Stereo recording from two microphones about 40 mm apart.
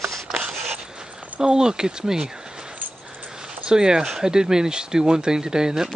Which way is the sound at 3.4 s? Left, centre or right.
Centre.